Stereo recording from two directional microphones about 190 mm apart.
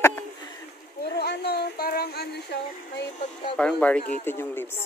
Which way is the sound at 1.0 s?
60° left (ahead or behind).